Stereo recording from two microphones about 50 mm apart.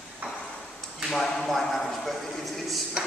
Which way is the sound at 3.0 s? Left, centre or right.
Right.